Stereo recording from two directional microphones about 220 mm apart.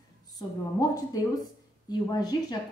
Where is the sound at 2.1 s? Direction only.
20° left (ahead or behind).